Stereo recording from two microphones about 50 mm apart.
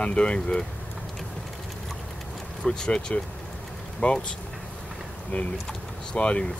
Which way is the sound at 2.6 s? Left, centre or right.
Centre.